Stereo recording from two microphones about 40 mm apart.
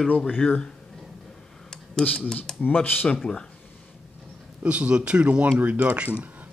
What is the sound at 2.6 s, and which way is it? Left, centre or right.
Speech, left.